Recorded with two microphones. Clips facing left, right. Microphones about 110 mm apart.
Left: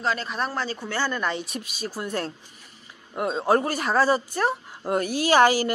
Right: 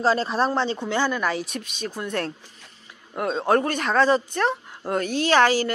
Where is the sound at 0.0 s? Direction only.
30° right (ahead or behind).